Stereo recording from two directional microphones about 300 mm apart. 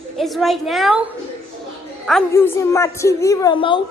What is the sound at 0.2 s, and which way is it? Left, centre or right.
A woman's voice, centre.